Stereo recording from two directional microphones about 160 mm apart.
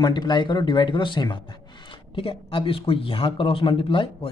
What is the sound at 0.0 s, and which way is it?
Speech, 30° left (ahead or behind).